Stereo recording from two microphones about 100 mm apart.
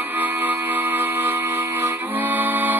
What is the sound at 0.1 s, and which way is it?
Music, 20° right (ahead or behind).